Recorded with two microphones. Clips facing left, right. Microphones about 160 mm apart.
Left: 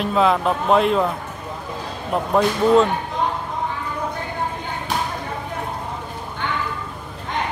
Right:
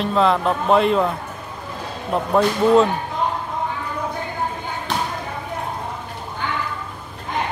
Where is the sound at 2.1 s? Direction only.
Centre (ahead or behind).